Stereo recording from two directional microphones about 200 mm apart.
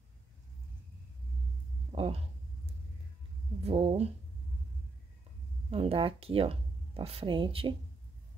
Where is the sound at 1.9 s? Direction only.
30° right (ahead or behind).